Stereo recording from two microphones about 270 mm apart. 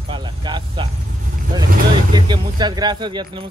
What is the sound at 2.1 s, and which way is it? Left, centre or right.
Speech, centre.